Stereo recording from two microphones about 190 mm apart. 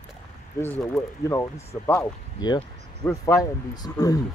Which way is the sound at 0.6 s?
15° left (ahead or behind).